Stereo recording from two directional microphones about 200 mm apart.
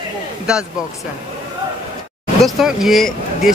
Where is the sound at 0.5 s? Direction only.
5° right (ahead or behind).